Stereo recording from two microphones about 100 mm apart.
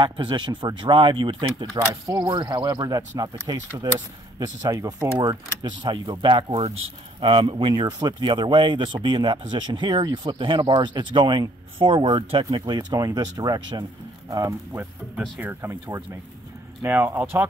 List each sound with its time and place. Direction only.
0.0 s speech: 50° right (ahead or behind)
2.0 s speech: 35° right (ahead or behind); by 12.4 s 60° right (ahead or behind)
12.4 s speech: 45° right (ahead or behind)
14.7 s speech: 15° right (ahead or behind)